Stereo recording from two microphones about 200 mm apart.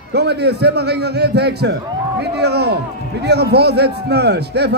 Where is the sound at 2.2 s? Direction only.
55° right (ahead or behind).